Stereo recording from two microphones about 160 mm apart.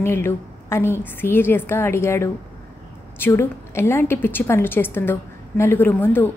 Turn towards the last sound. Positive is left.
turn(degrees=10)  # may be behind; listen again after turning